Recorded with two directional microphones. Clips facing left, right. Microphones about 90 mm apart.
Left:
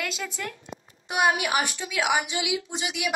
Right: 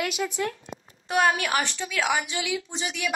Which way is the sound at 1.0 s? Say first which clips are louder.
Right 1 dB; 15° left (ahead or behind).